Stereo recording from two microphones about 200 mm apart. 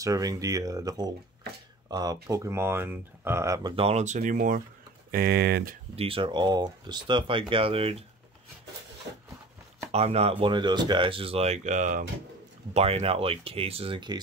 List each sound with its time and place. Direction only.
0.0 s speech: 15° right (ahead or behind)
3.7 s speech: 30° right (ahead or behind); by 5.8 s 50° right (ahead or behind)
5.9 s speech: 25° right (ahead or behind)
9.9 s speech: 30° right (ahead or behind)